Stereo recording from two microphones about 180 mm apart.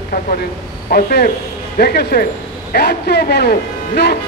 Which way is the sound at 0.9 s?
55° left (ahead or behind).